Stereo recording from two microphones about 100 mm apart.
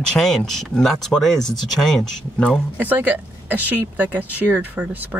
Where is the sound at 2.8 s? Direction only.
15° right (ahead or behind).